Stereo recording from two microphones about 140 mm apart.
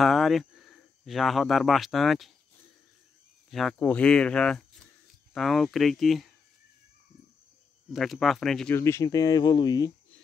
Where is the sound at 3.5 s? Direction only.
5° left (ahead or behind).